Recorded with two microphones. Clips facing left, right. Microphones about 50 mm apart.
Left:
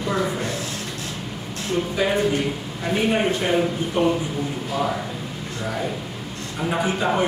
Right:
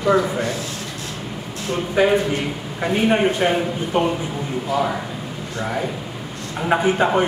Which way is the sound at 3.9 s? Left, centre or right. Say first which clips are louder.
Right 1 dB; right.